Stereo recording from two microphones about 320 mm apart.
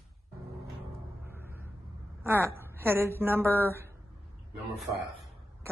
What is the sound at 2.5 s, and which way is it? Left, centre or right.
A woman's voice, centre.